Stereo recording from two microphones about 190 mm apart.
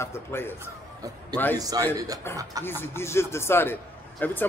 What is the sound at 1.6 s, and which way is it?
Speech, 20° right (ahead or behind).